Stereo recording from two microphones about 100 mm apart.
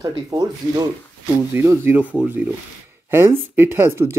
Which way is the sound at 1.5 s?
25° right (ahead or behind).